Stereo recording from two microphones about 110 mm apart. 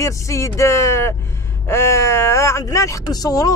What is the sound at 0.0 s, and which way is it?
Speech, 25° left (ahead or behind).